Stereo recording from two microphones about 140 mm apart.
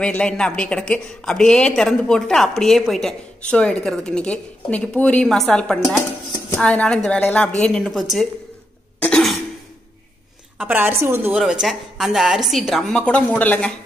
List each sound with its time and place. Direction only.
0.0 s a woman's voice: 10° left (ahead or behind)
9.0 s cough: 5° left (ahead or behind)
10.6 s a woman's voice: 15° right (ahead or behind)
11.3 s speech: 5° right (ahead or behind)